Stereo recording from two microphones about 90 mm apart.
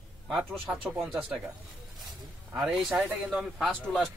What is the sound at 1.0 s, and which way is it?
Speech, 20° right (ahead or behind).